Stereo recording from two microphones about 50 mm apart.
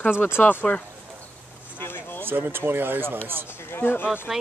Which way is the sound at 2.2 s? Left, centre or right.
Right.